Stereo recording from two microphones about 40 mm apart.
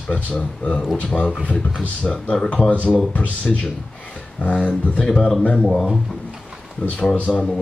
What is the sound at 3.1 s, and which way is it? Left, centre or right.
Speech, left.